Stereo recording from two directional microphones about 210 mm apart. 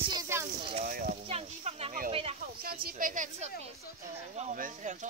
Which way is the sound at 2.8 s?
40° right (ahead or behind).